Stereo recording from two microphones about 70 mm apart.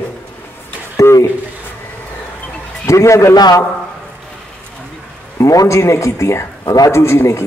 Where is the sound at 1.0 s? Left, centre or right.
Left.